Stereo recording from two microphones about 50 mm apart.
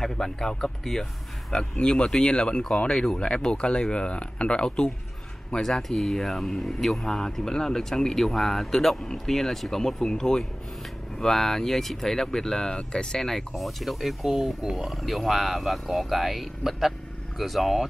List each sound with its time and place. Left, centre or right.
0.0 s speech: centre